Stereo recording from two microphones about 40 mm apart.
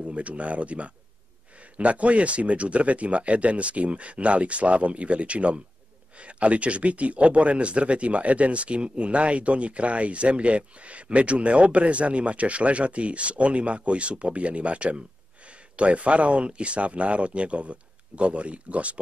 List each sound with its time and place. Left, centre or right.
0.0 s speech: right